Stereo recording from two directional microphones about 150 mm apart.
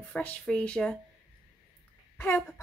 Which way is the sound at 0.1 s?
10° left (ahead or behind).